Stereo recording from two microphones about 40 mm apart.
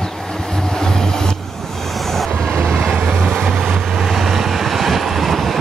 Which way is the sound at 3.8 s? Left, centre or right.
Centre.